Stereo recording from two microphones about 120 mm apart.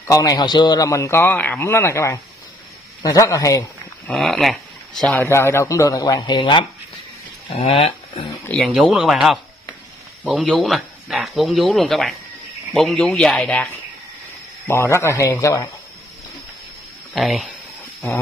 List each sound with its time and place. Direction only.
0.1 s a man's voice: 30° left (ahead or behind)
4.1 s speech: centre (ahead or behind)
5.0 s a man's voice: 15° left (ahead or behind); by 6.6 s 40° left (ahead or behind)
7.5 s speech: 50° left (ahead or behind)
8.5 s speech: centre (ahead or behind)
14.7 s a man's voice: 20° left (ahead or behind)
17.1 s speech: centre (ahead or behind)